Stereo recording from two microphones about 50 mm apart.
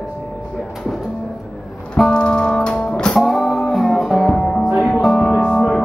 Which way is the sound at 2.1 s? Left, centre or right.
Centre.